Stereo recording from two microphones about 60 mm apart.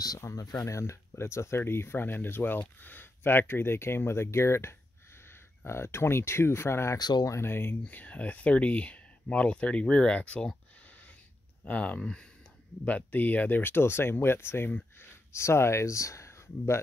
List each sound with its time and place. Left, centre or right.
0.2 s speech: left
0.7 s speech: left
7.8 s speech: left
11.6 s speech: left
12.8 s speech: left
15.3 s speech: left